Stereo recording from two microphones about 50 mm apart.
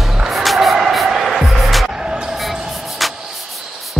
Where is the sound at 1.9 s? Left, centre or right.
Centre.